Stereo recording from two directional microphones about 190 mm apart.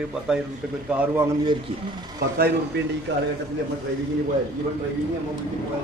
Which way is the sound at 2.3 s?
60° right (ahead or behind).